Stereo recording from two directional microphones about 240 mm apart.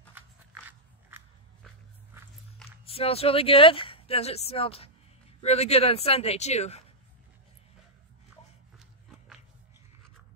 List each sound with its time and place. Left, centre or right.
0.7 s biting: centre
2.8 s speech: left